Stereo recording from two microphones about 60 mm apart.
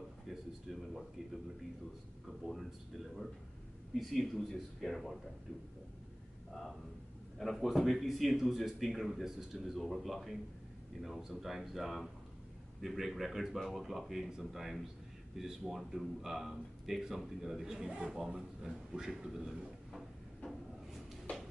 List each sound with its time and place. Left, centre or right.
0.3 s a sound: centre
2.2 s speech: centre
7.5 s speech: centre
21.3 s music: left